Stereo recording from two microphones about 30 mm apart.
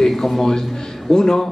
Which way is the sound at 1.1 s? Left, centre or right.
Left.